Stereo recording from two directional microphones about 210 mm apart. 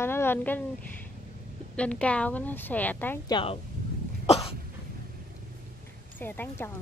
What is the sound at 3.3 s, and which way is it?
Speech, 25° left (ahead or behind).